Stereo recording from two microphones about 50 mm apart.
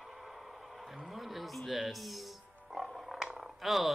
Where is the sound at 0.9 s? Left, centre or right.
Centre.